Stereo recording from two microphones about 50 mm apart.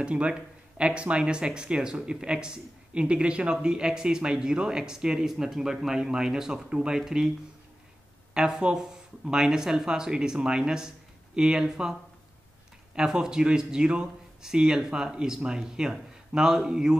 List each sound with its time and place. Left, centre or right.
0.0 s a man's voice: right
8.4 s a man's voice: centre